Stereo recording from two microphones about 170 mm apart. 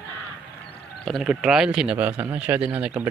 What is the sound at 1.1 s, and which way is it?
Speech, centre (ahead or behind).